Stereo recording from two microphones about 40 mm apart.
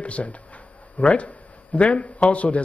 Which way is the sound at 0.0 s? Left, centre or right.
Left.